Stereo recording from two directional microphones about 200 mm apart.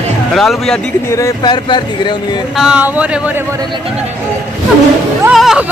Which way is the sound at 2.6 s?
5° right (ahead or behind).